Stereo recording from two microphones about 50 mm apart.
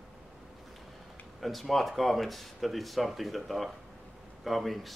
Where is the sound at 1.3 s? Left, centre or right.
Centre.